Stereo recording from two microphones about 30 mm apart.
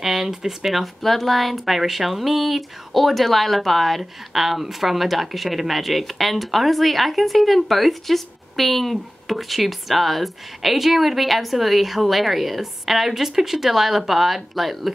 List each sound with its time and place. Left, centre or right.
0.0 s speech: centre
1.0 s a woman's voice: centre
4.0 s a woman's voice: centre